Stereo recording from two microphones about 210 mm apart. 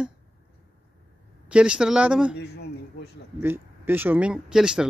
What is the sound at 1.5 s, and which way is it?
Speech, 5° right (ahead or behind).